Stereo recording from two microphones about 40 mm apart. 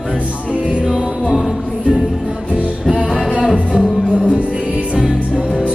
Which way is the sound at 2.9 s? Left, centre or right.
Centre.